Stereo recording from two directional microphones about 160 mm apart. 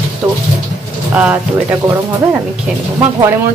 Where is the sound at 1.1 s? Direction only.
10° right (ahead or behind).